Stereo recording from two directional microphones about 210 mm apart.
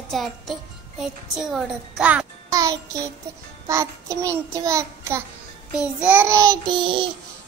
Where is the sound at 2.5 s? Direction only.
15° right (ahead or behind).